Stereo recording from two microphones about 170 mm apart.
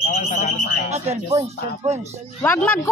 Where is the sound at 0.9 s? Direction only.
40° right (ahead or behind).